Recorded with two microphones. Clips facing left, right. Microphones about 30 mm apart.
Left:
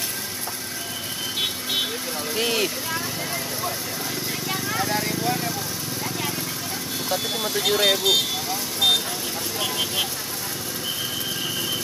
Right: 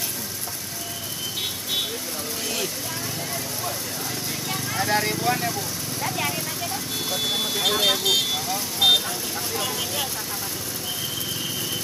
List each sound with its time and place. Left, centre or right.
2.5 s speech: left
4.5 s vehicle: centre
4.8 s speech: centre
5.1 s vehicle: centre
6.0 s clip-clop: centre
7.2 s speech: centre
9.6 s speech: centre